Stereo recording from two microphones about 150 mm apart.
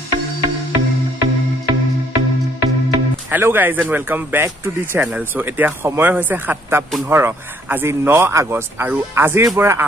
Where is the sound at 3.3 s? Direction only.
15° right (ahead or behind).